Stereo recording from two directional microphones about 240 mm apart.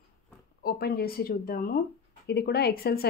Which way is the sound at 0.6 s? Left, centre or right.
Left.